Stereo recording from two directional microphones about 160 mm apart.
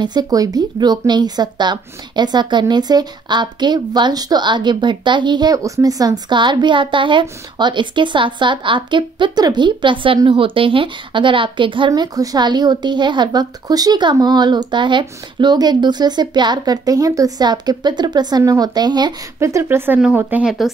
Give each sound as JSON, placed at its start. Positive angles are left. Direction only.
{"t": 0.0, "sound": "a woman's voice", "side_deg": -25}